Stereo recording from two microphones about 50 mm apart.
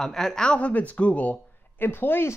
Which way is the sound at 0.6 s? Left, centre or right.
Left.